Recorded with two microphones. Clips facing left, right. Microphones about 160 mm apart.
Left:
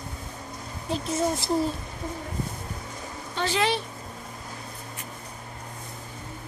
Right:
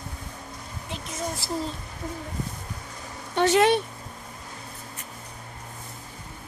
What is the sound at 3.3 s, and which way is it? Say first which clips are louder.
Speech: right 6 dB; 55° right (ahead or behind).